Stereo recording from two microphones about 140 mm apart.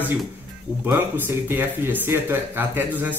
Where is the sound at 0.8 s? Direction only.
15° right (ahead or behind).